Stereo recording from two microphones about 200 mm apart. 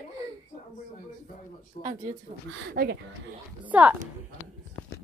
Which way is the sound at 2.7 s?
55° right (ahead or behind).